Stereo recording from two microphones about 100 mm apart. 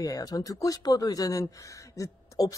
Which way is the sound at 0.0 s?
40° left (ahead or behind).